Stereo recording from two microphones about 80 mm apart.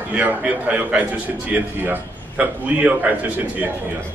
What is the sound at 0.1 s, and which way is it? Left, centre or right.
A man's voice, centre.